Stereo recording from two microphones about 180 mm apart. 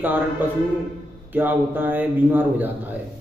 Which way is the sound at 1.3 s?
10° right (ahead or behind).